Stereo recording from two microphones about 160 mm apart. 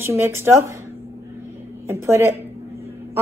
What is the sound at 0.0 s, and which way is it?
Speech, 15° right (ahead or behind).